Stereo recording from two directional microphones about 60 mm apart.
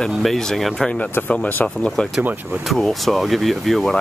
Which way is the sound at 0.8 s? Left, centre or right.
Left.